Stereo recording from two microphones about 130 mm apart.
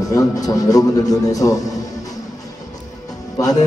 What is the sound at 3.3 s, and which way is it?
Music, 30° left (ahead or behind).